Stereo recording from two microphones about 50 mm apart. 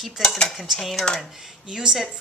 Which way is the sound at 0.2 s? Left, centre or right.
Centre.